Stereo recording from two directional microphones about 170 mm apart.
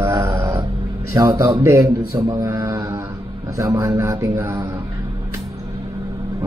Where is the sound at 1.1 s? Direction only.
20° right (ahead or behind).